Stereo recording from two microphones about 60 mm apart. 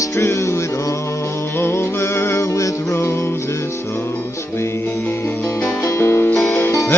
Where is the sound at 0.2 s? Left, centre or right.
Left.